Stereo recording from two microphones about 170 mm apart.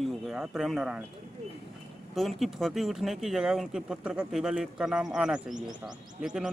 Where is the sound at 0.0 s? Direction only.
Centre (ahead or behind).